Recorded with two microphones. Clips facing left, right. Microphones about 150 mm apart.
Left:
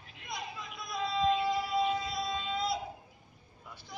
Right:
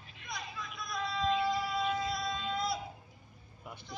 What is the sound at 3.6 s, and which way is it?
Vehicle, 20° right (ahead or behind).